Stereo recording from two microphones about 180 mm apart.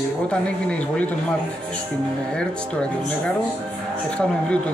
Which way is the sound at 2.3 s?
5° left (ahead or behind).